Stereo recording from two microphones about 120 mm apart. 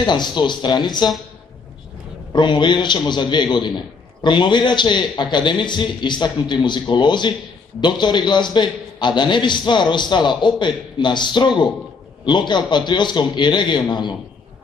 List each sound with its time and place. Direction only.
0.0 s a man's voice: 40° left (ahead or behind)
2.3 s a man's voice: 40° left (ahead or behind)